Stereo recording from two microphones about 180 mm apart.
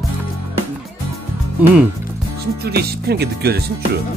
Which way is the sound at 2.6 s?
60° right (ahead or behind).